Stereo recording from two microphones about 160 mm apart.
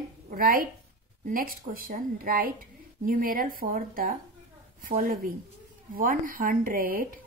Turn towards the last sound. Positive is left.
turn(degrees=-65)  # may be behind; listen again after turning